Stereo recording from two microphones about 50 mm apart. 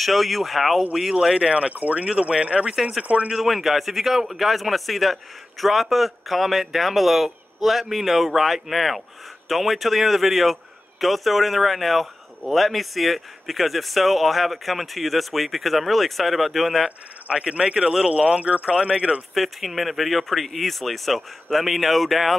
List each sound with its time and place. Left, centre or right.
0.0 s a man's voice: centre
1.3 s speech: right
2.7 s speech: centre
3.0 s speech: right
3.3 s a man's voice: centre
17.3 s speech: centre
19.3 s a man's voice: centre